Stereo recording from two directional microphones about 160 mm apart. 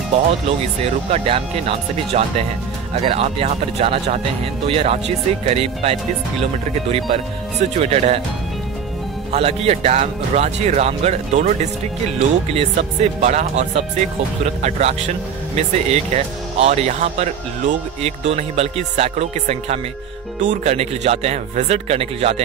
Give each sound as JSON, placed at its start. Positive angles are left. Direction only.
{"t": 0.8, "sound": "speech", "side_deg": -40}
{"t": 9.3, "sound": "speech", "side_deg": -40}